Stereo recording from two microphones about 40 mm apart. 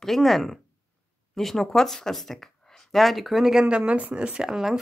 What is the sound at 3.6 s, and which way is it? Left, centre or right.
Speech, right.